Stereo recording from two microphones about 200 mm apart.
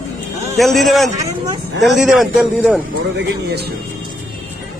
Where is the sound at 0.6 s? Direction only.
Centre (ahead or behind).